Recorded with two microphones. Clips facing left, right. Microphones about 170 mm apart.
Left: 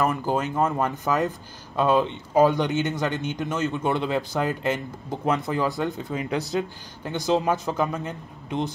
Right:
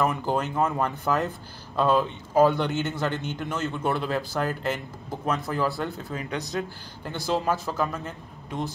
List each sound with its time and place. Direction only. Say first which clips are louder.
0.0 s a man's voice: left 1 dB; 5° left (ahead or behind)
7.1 s a man's voice: left 3 dB; 15° left (ahead or behind)